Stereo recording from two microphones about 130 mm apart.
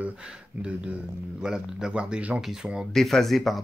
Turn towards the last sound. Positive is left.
turn(degrees=0)  # may be behind; listen again after turning